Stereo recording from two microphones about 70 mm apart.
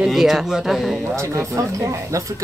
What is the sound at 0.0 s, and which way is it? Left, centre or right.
Speech, centre.